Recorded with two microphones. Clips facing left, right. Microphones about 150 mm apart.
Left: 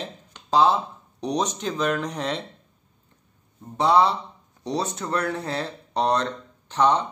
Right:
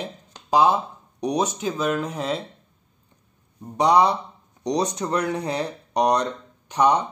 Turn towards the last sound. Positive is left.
turn(degrees=-15)  # may be behind; listen again after turning